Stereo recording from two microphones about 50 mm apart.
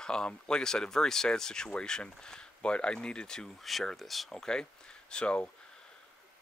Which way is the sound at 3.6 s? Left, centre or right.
Centre.